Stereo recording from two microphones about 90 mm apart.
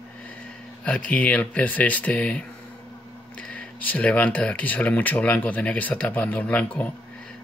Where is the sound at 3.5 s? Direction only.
15° left (ahead or behind).